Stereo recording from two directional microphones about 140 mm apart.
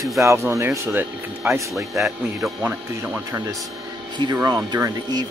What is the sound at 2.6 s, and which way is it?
Speech, 15° right (ahead or behind).